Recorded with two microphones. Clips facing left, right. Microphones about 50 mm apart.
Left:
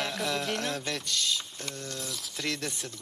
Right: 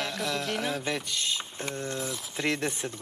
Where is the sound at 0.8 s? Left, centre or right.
Centre.